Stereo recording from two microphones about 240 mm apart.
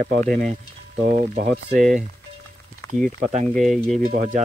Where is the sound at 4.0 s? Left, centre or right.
Right.